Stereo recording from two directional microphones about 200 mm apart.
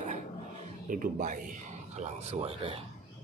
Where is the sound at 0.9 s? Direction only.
40° right (ahead or behind).